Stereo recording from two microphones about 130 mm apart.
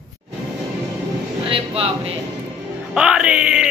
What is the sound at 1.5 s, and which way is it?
Speech, 50° right (ahead or behind).